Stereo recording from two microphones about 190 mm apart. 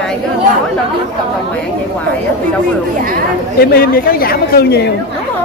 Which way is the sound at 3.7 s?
55° left (ahead or behind).